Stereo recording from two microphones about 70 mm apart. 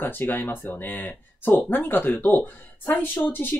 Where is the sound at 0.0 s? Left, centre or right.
Left.